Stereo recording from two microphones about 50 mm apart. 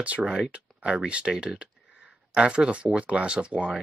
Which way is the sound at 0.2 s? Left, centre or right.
Centre.